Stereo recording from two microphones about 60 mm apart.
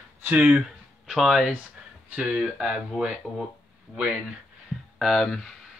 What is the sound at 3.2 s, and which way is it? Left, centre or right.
Speech, left.